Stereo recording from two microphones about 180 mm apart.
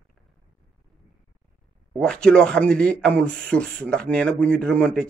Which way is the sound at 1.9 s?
5° left (ahead or behind).